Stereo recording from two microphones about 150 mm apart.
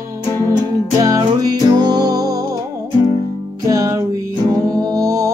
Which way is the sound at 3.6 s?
20° right (ahead or behind).